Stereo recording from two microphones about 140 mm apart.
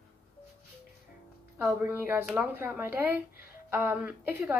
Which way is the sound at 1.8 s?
15° right (ahead or behind).